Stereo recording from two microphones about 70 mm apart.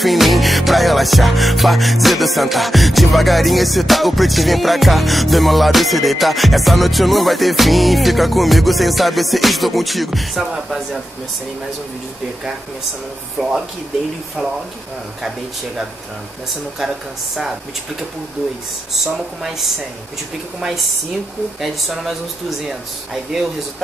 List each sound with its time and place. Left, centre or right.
0.0 s music: centre
13.4 s speech: centre
15.2 s music: centre
21.5 s music: centre